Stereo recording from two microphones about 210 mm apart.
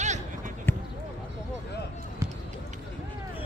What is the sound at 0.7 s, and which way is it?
Basketball bounce, 10° left (ahead or behind).